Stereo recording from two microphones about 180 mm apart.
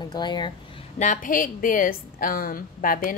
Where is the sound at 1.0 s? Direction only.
45° left (ahead or behind).